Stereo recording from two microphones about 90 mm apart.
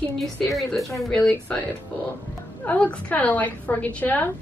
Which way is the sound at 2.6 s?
20° left (ahead or behind).